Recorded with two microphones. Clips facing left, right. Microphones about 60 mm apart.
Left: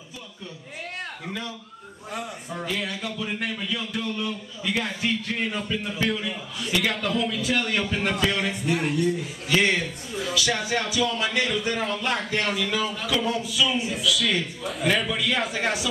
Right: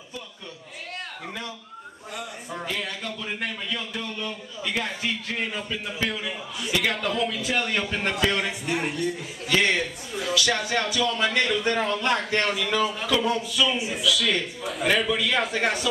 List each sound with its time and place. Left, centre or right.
2.5 s speech: centre
8.9 s speech: centre
9.6 s speech: centre
10.3 s speech: centre